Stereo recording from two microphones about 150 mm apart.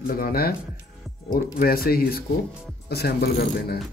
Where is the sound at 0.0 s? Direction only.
80° left.